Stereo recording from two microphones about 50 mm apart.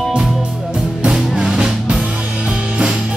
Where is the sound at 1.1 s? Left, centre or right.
Centre.